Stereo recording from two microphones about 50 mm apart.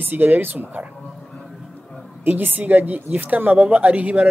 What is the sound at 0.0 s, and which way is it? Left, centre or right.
Speech, right.